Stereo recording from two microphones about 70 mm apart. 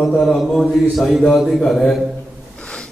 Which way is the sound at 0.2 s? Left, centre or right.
Centre.